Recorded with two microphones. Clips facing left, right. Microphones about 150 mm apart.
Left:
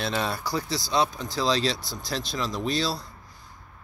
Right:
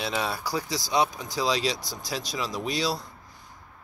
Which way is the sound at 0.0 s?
5° right (ahead or behind).